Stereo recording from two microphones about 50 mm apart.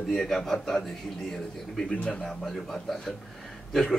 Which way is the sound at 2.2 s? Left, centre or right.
Centre.